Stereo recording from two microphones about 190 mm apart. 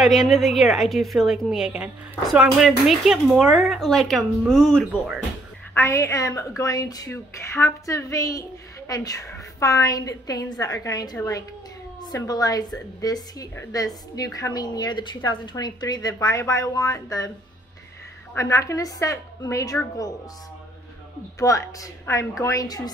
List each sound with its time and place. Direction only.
0.0 s speech: centre (ahead or behind)
5.8 s a woman's voice: 15° left (ahead or behind)
18.3 s a woman's voice: 15° left (ahead or behind)
21.4 s a woman's voice: 15° left (ahead or behind)